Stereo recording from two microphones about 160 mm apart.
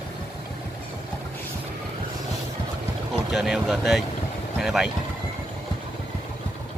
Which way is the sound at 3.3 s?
Centre (ahead or behind).